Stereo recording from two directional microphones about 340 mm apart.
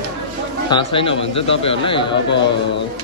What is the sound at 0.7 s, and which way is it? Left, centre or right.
Speech, centre.